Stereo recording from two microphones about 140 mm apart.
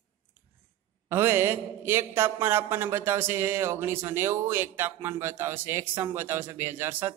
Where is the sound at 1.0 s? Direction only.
15° right (ahead or behind).